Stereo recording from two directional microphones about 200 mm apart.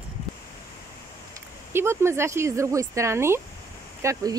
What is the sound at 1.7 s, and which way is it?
Speech, 10° right (ahead or behind).